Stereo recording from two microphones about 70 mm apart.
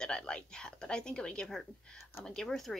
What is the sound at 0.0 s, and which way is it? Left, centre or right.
A woman's voice, centre.